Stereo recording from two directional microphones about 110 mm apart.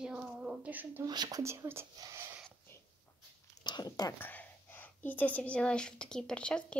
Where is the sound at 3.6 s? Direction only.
40° left (ahead or behind).